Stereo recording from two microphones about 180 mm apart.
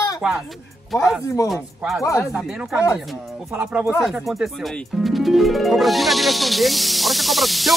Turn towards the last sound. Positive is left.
turn(degrees=0)  # may be behind; listen again after turning